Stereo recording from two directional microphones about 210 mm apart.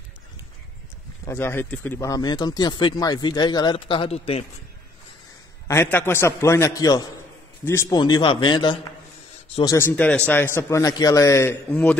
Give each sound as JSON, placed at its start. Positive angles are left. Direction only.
{"t": 1.2, "sound": "speech", "side_deg": 10}
{"t": 5.7, "sound": "a man's voice", "side_deg": 10}